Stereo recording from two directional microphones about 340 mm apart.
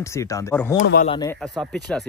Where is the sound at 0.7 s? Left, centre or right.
Left.